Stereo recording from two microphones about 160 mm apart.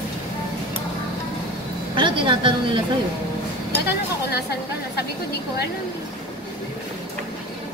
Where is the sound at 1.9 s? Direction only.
30° right (ahead or behind).